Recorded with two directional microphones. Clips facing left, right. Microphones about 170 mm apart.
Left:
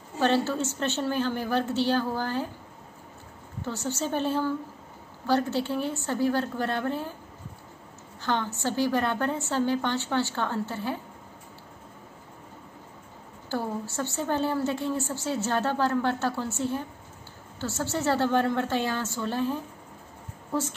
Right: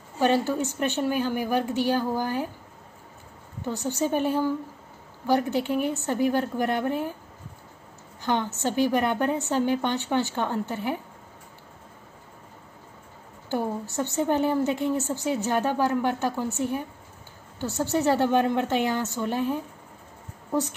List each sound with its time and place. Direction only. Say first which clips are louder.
0.2 s a woman's voice: right 2 dB; 15° right (ahead or behind)
3.6 s a woman's voice: right 4 dB; 15° right (ahead or behind)
8.2 s a woman's voice: right 2 dB; 15° right (ahead or behind)
13.5 s a woman's voice: right 3 dB; 20° right (ahead or behind)